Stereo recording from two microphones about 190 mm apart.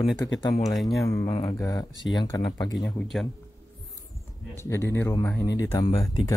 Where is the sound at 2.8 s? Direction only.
10° left (ahead or behind).